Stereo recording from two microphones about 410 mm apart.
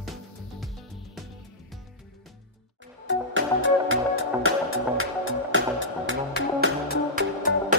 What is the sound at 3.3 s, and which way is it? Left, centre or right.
Music, right.